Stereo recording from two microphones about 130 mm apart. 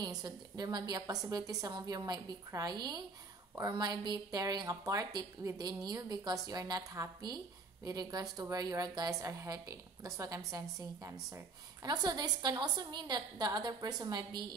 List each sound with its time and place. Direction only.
0.0 s a woman's voice: 30° right (ahead or behind)